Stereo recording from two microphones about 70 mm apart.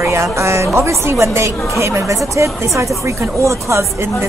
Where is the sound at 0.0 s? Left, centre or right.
Right.